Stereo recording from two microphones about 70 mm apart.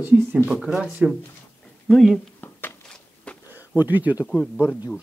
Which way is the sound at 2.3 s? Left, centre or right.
Left.